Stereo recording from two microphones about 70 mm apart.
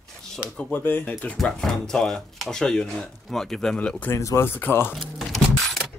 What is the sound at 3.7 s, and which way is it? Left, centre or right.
Speech, left.